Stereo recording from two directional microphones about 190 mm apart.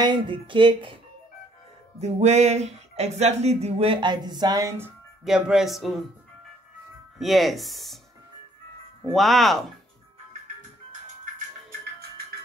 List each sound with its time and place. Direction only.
0.0 s speech: 25° right (ahead or behind)
2.0 s a sound: 35° right (ahead or behind); by 4.9 s 15° right (ahead or behind)
5.2 s speech: centre (ahead or behind)
7.2 s speech: centre (ahead or behind)
9.1 s speech: centre (ahead or behind)